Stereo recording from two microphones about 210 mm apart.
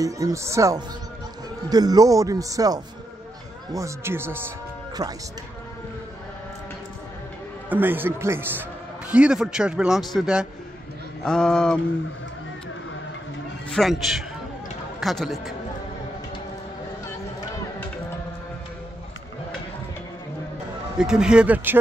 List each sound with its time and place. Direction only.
0.0 s speech: 15° right (ahead or behind)
7.7 s a man's voice: 10° right (ahead or behind)
13.7 s a man's voice: centre (ahead or behind)
21.0 s a man's voice: 5° right (ahead or behind)